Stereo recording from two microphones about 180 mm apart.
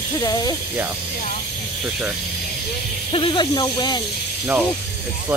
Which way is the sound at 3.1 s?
30° left (ahead or behind).